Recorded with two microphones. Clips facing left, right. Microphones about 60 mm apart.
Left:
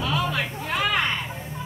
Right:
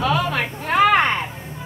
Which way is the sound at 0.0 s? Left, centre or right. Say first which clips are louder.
Right 5 dB; right.